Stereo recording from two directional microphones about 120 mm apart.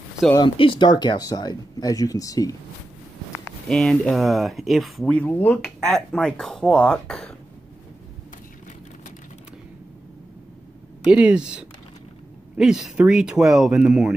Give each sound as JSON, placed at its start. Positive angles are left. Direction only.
{"t": 0.4, "sound": "speech", "side_deg": 40}
{"t": 3.6, "sound": "speech", "side_deg": 5}
{"t": 5.2, "sound": "speech", "side_deg": 15}
{"t": 11.1, "sound": "speech", "side_deg": -10}